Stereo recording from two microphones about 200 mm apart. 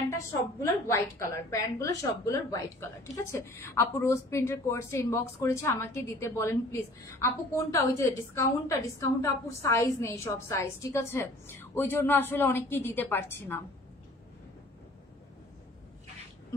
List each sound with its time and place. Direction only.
0.6 s a woman's voice: 15° left (ahead or behind)